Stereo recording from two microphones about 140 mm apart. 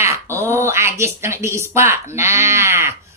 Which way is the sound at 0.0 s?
20° right (ahead or behind).